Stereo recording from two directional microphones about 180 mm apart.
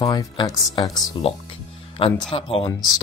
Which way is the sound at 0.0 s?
20° left (ahead or behind).